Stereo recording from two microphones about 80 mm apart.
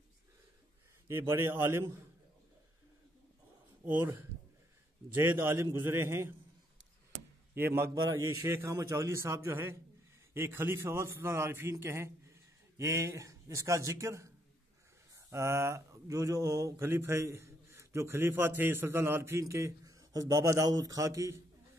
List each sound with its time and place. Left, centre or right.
1.0 s a man's voice: right
3.8 s a man's voice: right
7.5 s a man's voice: right
7.9 s a man's voice: right
16.8 s a man's voice: right